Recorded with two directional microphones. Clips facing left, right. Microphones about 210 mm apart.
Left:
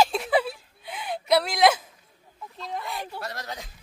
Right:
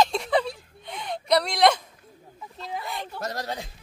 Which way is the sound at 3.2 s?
40° right (ahead or behind).